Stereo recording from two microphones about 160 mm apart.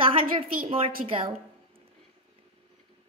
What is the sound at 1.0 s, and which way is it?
Speech, 50° right (ahead or behind).